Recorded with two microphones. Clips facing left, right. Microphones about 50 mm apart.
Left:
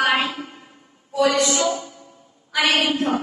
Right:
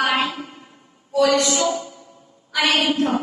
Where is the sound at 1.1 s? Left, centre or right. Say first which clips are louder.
Right 1 dB; centre.